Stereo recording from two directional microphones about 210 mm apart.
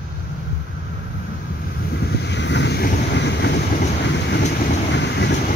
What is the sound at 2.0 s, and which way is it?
Vehicle, 55° left (ahead or behind).